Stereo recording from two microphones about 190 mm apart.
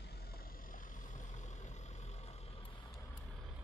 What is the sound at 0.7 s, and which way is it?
Vehicle, 40° left (ahead or behind).